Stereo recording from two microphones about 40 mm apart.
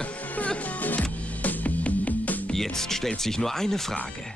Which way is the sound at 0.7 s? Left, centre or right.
Left.